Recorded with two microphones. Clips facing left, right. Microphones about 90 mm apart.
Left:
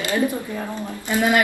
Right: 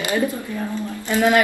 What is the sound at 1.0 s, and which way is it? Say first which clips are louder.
Speech: right 2 dB; 15° left (ahead or behind).